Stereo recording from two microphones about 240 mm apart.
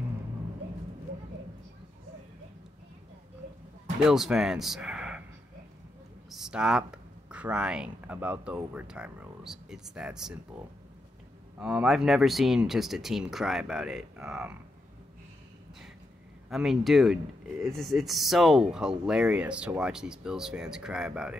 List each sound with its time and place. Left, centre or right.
4.0 s speech: centre
6.3 s a sound: centre
6.9 s speech: centre
11.5 s speech: centre
16.4 s speech: centre